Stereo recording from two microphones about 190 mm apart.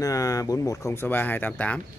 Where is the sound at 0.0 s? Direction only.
20° left (ahead or behind).